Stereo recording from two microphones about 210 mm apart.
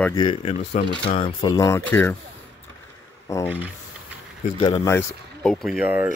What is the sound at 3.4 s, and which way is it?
Speech, 5° right (ahead or behind).